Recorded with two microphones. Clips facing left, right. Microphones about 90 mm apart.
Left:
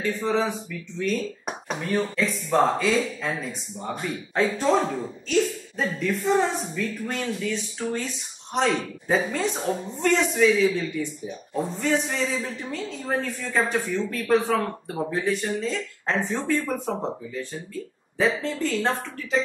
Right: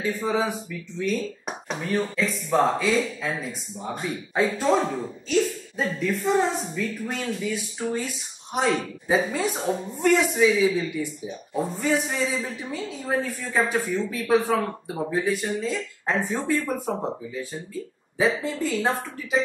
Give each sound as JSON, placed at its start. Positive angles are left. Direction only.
{"t": 0.2, "sound": "a woman's voice", "side_deg": -5}